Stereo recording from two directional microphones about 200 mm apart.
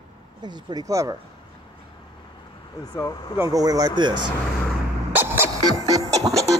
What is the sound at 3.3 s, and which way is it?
Speech, 15° right (ahead or behind).